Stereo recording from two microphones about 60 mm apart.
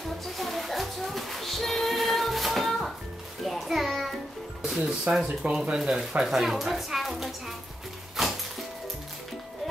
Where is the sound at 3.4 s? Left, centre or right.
Centre.